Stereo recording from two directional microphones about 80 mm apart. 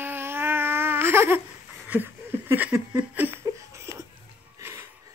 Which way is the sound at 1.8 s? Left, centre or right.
Right.